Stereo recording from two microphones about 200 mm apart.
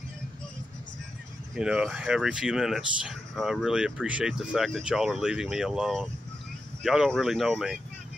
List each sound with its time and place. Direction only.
1.5 s speech: 5° right (ahead or behind)